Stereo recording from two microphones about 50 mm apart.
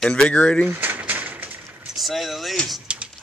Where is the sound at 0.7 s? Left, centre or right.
Right.